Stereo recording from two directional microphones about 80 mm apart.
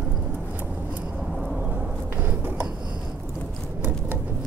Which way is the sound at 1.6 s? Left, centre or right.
Centre.